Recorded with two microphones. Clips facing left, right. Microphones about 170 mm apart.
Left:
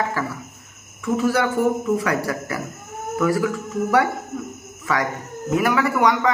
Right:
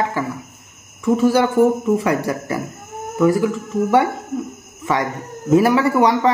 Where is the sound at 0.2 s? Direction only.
20° right (ahead or behind).